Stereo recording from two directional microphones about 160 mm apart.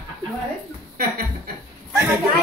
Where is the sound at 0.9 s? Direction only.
65° right (ahead or behind).